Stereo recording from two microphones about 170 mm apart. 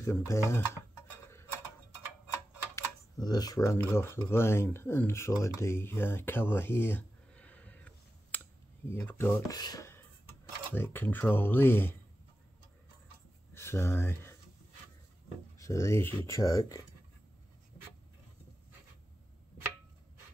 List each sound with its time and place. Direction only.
0.0 s speech: 15° left (ahead or behind)
2.7 s a sound: 25° left (ahead or behind)
3.9 s speech: 15° left (ahead or behind)
9.6 s a sound: 20° left (ahead or behind)
10.7 s speech: 10° left (ahead or behind)
13.6 s speech: 15° left (ahead or behind)
15.5 s speech: 20° left (ahead or behind)